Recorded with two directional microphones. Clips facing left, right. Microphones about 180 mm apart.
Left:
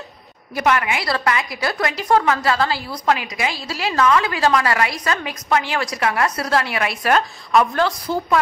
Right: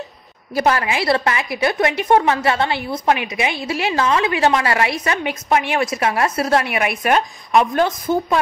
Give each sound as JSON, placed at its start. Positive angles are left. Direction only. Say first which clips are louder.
{"t": 0.6, "sound": "a woman's voice", "louder": "right 2 dB", "side_deg": -30}